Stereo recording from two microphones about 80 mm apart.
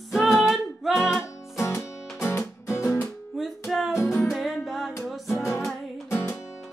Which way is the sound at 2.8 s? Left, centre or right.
Left.